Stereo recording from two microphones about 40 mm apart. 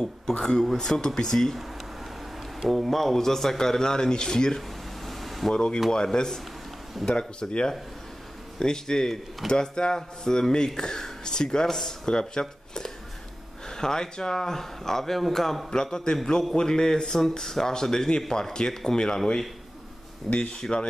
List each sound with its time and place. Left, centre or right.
0.4 s speech: centre
2.7 s speech: centre
4.6 s air conditioning: centre
5.5 s speech: left
7.2 s speech: left; by 15.6 s centre
15.7 s speech: centre